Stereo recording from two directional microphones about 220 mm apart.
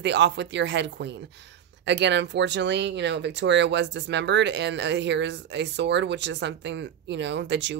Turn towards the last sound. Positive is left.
turn(degrees=-50)  # may be behind; listen again after turning